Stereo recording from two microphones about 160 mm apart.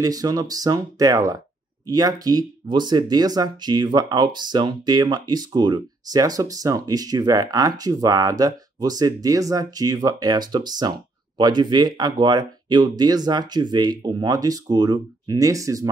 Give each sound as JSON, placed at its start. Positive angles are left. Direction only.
{"t": 0.0, "sound": "speech", "side_deg": -25}